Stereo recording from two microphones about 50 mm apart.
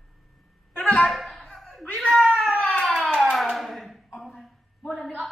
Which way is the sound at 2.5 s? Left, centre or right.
Left.